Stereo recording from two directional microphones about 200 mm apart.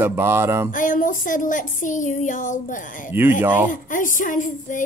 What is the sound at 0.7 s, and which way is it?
Speech, 40° left (ahead or behind).